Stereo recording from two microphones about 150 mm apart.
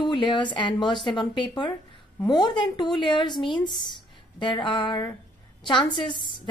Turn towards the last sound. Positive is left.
turn(degrees=30)  # may be behind; listen again after turning